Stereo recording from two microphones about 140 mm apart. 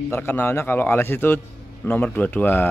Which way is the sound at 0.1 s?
15° left (ahead or behind).